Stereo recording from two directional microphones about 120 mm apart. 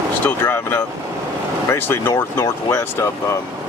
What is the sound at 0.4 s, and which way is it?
Speech, 20° left (ahead or behind).